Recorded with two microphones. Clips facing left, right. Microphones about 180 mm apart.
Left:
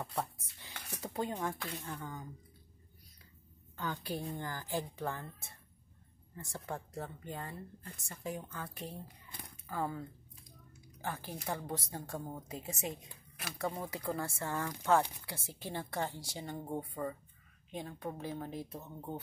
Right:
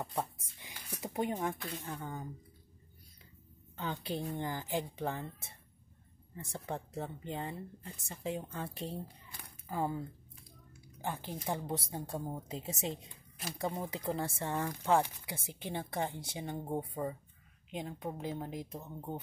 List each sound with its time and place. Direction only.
0.0 s speech: 15° right (ahead or behind)
3.7 s speech: 20° right (ahead or behind)